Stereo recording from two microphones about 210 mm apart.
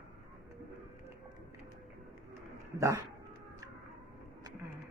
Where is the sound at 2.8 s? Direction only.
15° right (ahead or behind).